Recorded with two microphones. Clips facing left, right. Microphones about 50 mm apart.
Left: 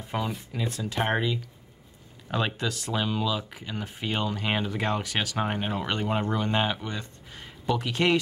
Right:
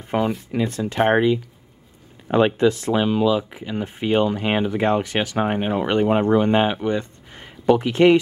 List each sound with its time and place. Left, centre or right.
0.0 s a sound: right
0.5 s speech: right
0.9 s speech: right